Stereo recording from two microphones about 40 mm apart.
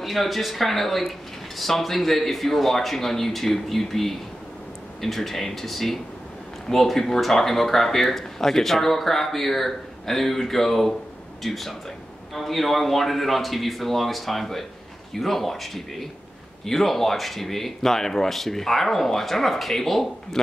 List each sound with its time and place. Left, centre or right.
0.0 s speech: centre